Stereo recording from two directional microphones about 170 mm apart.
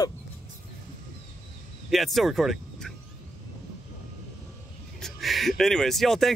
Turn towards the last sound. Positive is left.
turn(degrees=0)  # may be behind; listen again after turning